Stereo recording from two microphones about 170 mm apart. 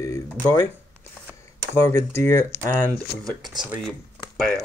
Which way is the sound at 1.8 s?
15° left (ahead or behind).